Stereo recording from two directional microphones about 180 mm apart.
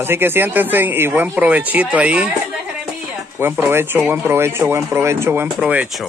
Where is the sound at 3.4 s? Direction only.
10° right (ahead or behind).